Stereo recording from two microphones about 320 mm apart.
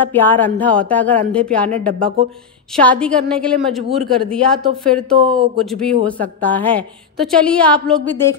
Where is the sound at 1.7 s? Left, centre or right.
Right.